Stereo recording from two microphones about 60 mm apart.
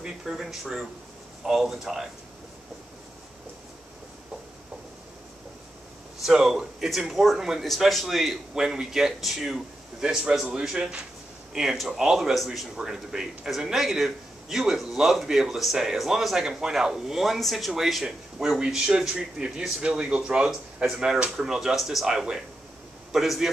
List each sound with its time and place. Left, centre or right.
0.0 s speech: centre
6.2 s speech: centre
18.0 s speech: centre